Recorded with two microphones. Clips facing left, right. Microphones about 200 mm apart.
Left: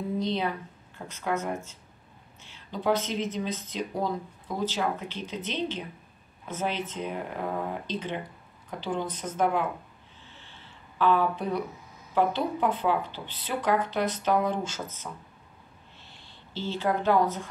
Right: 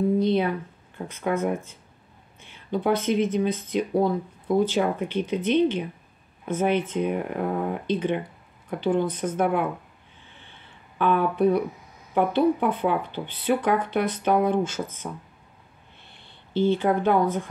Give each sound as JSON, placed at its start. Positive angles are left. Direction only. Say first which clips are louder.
{"t": 0.2, "sound": "speech", "louder": "right 7 dB", "side_deg": -55}
{"t": 10.2, "sound": "a sound", "louder": "right 1 dB", "side_deg": -55}
{"t": 12.1, "sound": "speech", "louder": "right 5 dB", "side_deg": -55}